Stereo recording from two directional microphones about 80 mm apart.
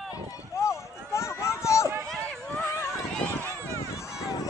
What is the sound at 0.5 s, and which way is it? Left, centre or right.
Run, left.